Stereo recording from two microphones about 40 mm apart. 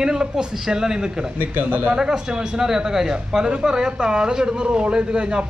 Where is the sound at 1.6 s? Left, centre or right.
Right.